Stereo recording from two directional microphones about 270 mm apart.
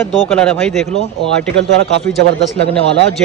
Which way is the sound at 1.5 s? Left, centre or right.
Right.